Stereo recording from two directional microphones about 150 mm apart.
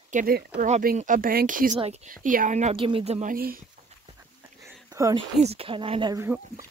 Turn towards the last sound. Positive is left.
turn(degrees=-20)  # may be behind; listen again after turning